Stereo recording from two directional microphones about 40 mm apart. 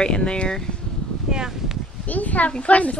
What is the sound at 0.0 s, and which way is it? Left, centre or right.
Speech, left.